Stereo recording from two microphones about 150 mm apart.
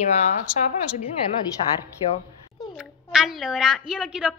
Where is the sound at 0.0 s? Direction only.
50° left (ahead or behind).